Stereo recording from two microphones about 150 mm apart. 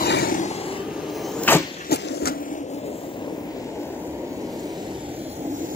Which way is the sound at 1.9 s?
90° left.